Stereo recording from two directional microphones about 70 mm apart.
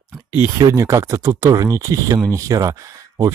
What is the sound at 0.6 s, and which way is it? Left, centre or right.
Speech, right.